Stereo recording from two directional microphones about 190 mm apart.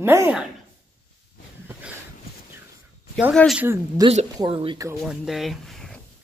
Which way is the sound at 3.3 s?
Centre (ahead or behind).